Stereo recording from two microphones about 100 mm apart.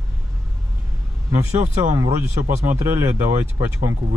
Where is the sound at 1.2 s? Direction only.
30° right (ahead or behind).